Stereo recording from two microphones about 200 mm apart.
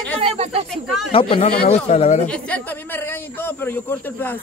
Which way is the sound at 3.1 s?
10° left (ahead or behind).